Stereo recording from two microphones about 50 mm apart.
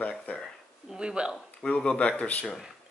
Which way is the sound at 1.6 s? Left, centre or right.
Centre.